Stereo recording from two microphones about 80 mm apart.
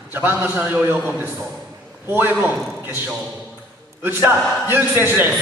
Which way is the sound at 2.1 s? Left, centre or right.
Right.